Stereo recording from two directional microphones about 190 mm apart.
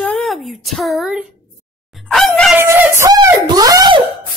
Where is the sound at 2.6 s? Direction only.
15° right (ahead or behind).